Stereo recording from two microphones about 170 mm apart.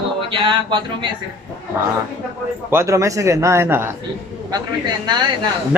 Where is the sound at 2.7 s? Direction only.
15° right (ahead or behind).